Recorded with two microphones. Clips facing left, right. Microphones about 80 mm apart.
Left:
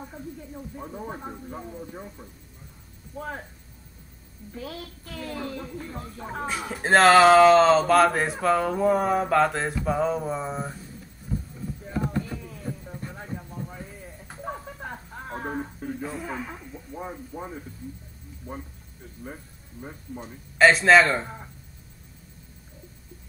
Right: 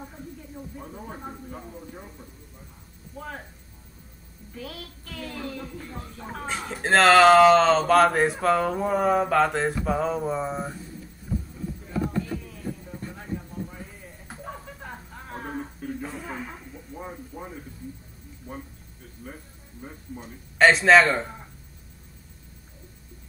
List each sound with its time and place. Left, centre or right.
0.7 s speech: centre
3.2 s speech: left
5.1 s speech: left
6.3 s speech: centre
13.7 s clip-clop: centre
14.4 s a sound: left
16.0 s a sound: centre
20.5 s speech: centre